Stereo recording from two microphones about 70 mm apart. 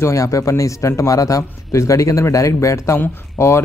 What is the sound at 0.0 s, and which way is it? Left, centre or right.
Speech, left.